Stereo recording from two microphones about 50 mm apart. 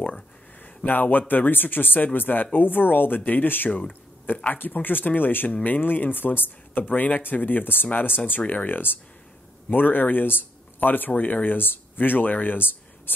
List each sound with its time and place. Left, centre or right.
0.8 s speech: left
8.4 s speech: left